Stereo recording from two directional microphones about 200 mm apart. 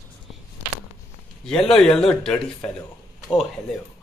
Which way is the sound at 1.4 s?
5° left (ahead or behind).